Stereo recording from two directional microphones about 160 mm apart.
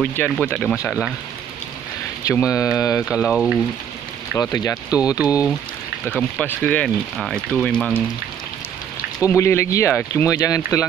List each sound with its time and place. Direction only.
0.0 s speech: 15° left (ahead or behind)
2.5 s speech: 20° left (ahead or behind)
3.1 s speech: 5° right (ahead or behind)
4.4 s speech: 20° left (ahead or behind)
6.1 s speech: 10° left (ahead or behind)
9.2 s speech: 15° left (ahead or behind)